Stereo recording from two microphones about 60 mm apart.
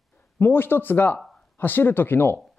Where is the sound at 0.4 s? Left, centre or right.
Left.